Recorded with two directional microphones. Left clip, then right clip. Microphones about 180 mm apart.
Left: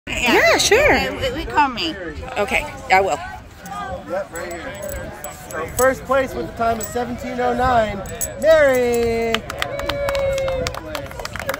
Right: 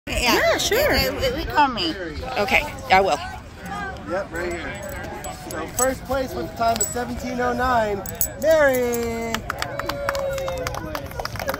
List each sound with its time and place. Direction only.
0.1 s a sound: 60° right (ahead or behind)
0.4 s speech: 25° left (ahead or behind)
0.9 s speech: 60° right (ahead or behind)
2.3 s speech: 5° left (ahead or behind)
4.1 s speech: 70° left (ahead or behind)
5.6 s speech: 50° left (ahead or behind)
6.1 s speech: 15° left (ahead or behind)